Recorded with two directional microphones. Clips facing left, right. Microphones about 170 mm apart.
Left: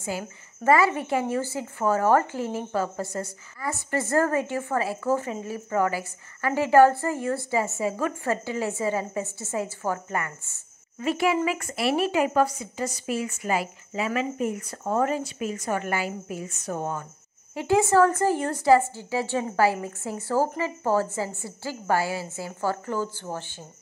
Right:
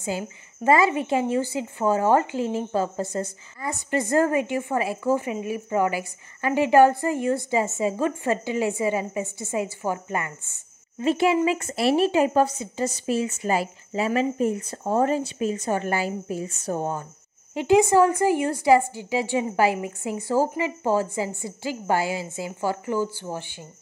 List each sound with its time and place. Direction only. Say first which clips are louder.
0.7 s a woman's voice: right 1 dB; 20° right (ahead or behind)
17.6 s a woman's voice: right 2 dB; 20° right (ahead or behind)